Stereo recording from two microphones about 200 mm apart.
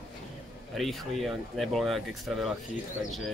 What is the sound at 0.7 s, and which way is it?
Speech, centre (ahead or behind).